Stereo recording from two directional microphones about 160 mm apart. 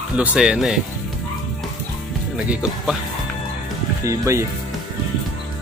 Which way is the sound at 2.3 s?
5° right (ahead or behind).